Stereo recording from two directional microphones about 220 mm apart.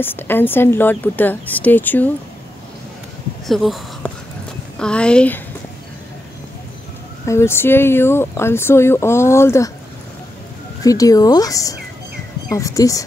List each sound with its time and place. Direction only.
0.0 s speech: 10° left (ahead or behind)
3.4 s a woman's voice: centre (ahead or behind)
7.2 s speech: 10° left (ahead or behind)
10.8 s speech: 15° left (ahead or behind)